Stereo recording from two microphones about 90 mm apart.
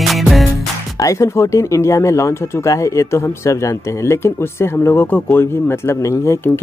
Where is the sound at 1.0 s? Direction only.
35° left (ahead or behind).